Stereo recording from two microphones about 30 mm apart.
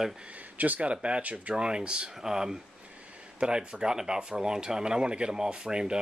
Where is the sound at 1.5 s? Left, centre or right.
Right.